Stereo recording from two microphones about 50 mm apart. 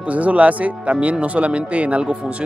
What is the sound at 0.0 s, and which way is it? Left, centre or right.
Speech, right.